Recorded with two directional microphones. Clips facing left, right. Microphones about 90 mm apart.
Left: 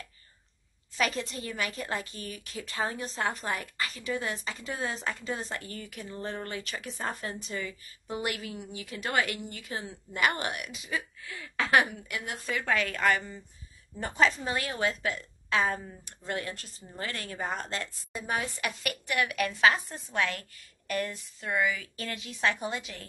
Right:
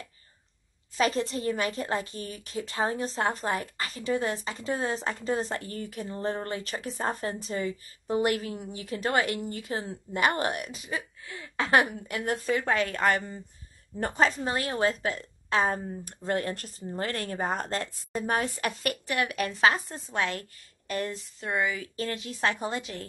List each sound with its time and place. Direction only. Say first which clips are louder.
0.9 s speech: right 4 dB; 35° right (ahead or behind)
11.8 s speech: right 4 dB; 40° right (ahead or behind)
13.9 s speech: right 1 dB; 45° right (ahead or behind)